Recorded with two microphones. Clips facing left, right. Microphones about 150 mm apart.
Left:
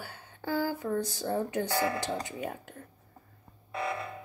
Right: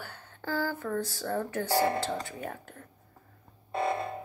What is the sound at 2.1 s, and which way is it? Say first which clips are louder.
Speech: left 1 dB; 15° left (ahead or behind).